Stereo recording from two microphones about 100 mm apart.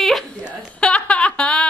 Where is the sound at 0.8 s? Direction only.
10° left (ahead or behind).